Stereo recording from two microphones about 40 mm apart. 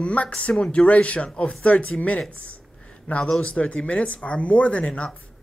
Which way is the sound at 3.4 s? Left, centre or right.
Left.